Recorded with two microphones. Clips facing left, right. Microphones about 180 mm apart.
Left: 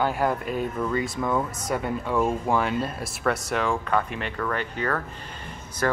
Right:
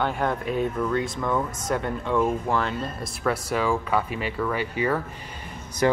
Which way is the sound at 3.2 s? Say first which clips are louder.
Right 1 dB; centre (ahead or behind).